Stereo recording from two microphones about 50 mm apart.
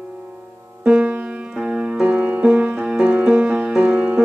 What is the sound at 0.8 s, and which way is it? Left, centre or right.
Music, centre.